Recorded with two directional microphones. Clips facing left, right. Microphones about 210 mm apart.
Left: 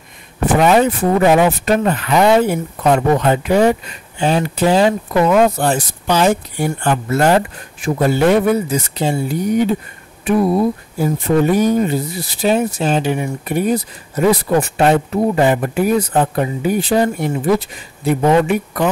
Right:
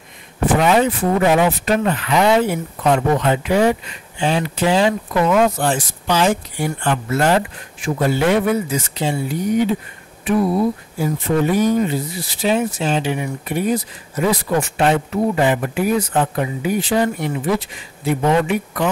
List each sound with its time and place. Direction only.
0.6 s speech: 45° left (ahead or behind)